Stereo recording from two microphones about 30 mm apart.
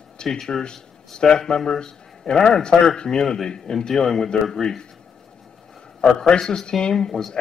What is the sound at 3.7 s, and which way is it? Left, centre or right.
Speech, centre.